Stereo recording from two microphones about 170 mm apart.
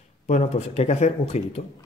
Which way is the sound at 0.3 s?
40° left (ahead or behind).